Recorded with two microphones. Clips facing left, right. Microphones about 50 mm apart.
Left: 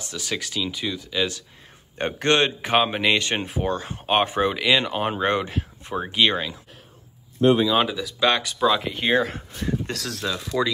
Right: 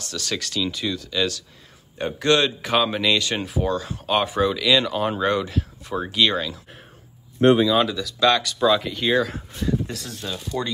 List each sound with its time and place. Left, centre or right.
0.0 s speech: centre
2.0 s a man's voice: left
2.2 s speech: left
7.5 s speech: centre
7.8 s speech: centre
8.5 s speech: centre
8.8 s speech: left
9.1 s speech: left
9.8 s speech: left